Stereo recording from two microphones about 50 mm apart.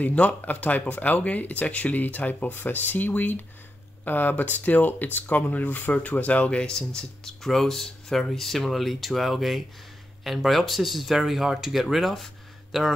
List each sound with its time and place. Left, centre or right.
0.0 s speech: left
6.6 s speech: centre